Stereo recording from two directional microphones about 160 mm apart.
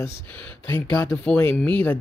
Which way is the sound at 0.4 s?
10° left (ahead or behind).